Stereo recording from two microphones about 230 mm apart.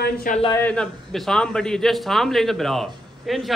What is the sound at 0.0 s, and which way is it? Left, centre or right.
Speech, left.